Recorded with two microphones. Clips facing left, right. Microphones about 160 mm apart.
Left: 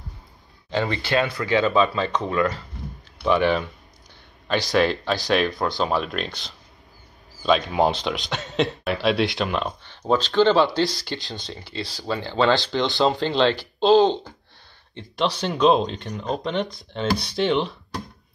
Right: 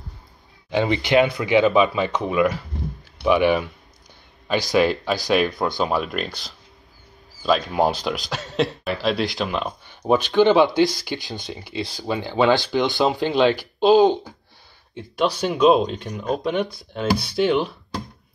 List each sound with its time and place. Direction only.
0.7 s speech: 15° right (ahead or behind)
4.7 s speech: 5° right (ahead or behind)
9.8 s speech: 15° right (ahead or behind)